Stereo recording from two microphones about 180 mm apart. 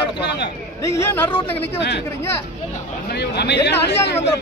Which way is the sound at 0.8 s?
15° left (ahead or behind).